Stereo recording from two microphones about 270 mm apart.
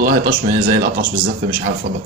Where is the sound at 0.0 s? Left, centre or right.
Right.